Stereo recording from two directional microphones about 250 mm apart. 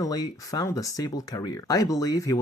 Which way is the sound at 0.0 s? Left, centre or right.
Centre.